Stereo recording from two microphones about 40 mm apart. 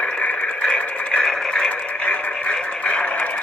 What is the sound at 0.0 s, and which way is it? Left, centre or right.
Radio, left.